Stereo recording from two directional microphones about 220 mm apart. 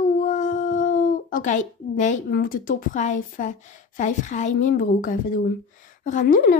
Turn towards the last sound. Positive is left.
turn(degrees=40)  # may be behind; listen again after turning